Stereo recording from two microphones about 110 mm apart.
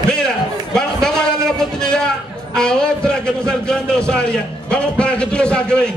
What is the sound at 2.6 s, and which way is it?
A man's voice, 5° left (ahead or behind).